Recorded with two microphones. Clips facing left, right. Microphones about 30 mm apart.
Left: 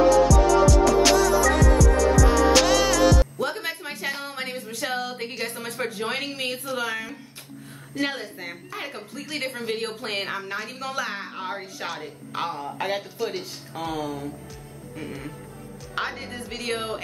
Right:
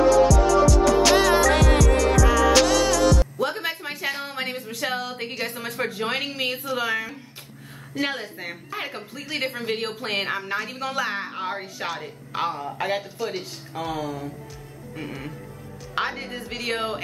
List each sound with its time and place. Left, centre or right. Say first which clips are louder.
0.3 s music: even; centre
1.1 s music: right 2 dB; right
1.5 s music: right 1 dB; right
2.5 s music: even; centre
3.3 s a sound: right 2 dB; centre
7.9 s a woman's voice: right 1 dB; centre
15.0 s a woman's voice: right 1 dB; centre